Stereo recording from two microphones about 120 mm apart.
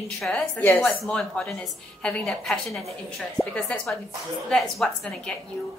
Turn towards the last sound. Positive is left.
turn(degrees=5)  # may be behind; listen again after turning